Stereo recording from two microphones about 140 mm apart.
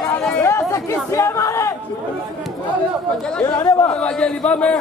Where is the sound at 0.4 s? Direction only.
20° left (ahead or behind).